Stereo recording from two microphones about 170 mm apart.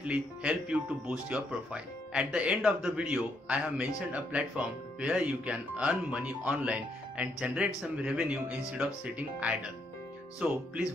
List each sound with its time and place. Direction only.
0.0 s speech: 5° right (ahead or behind)